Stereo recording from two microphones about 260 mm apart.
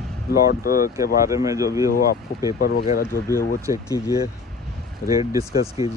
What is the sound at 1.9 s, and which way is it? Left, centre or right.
Speech, left.